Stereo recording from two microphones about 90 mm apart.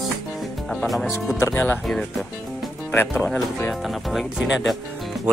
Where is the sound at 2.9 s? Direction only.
20° left (ahead or behind).